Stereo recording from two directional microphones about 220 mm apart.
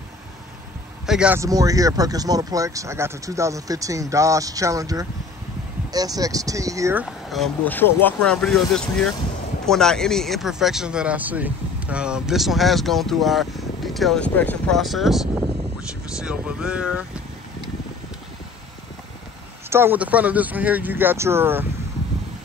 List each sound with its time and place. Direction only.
1.0 s speech: 5° right (ahead or behind)
7.2 s speech: centre (ahead or behind)
19.7 s speech: 10° right (ahead or behind)